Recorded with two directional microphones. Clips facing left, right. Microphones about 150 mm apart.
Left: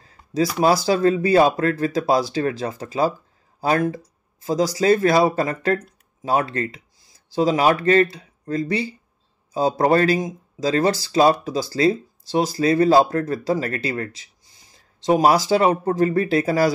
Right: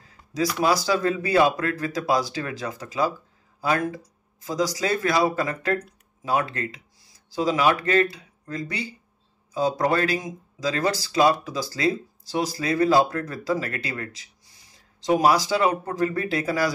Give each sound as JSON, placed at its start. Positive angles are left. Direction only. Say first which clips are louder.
{"t": 0.3, "sound": "speech", "louder": "left 4 dB", "side_deg": 25}